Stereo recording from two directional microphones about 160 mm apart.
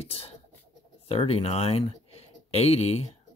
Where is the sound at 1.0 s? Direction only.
35° left (ahead or behind).